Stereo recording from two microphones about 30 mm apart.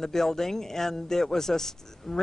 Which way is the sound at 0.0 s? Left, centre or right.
Centre.